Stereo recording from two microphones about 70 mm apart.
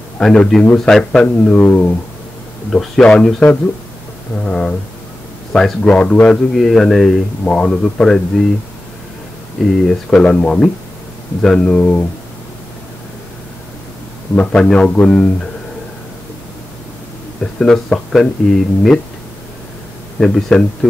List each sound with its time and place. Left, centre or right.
0.2 s a man's voice: centre
1.5 s speech: centre
2.7 s a man's voice: centre
4.5 s a man's voice: centre
5.9 s a man's voice: centre
9.6 s speech: centre
10.1 s a man's voice: centre
14.3 s a man's voice: centre
17.4 s a man's voice: centre
20.2 s a man's voice: centre